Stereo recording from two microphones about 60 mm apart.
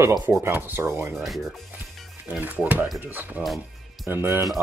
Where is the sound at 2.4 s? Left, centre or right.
Right.